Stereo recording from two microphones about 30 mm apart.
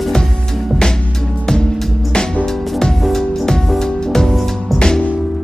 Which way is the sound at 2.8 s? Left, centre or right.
Centre.